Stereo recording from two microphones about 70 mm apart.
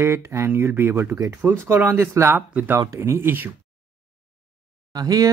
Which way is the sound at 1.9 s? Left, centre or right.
Right.